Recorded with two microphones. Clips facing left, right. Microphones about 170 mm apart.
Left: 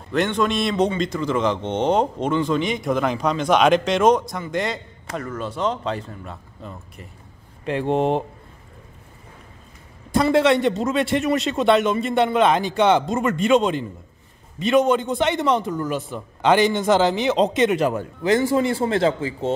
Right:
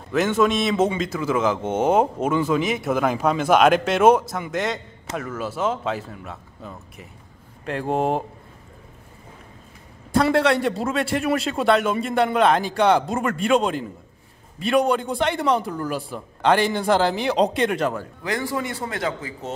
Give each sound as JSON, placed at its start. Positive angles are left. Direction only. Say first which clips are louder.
{"t": 0.1, "sound": "speech", "louder": "right 1 dB", "side_deg": -5}
{"t": 10.3, "sound": "speech", "louder": "left 2 dB", "side_deg": 0}
{"t": 17.9, "sound": "speech", "louder": "left 7 dB", "side_deg": 25}